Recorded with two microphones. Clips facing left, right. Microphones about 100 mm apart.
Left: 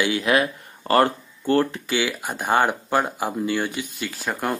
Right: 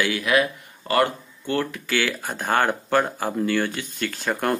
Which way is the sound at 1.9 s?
15° left (ahead or behind).